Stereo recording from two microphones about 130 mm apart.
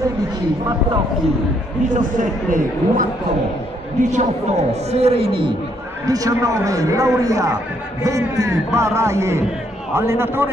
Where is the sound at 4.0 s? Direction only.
65° right (ahead or behind); by 5.5 s 40° right (ahead or behind).